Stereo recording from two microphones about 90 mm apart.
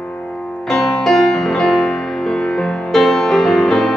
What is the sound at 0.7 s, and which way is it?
Music, 5° left (ahead or behind).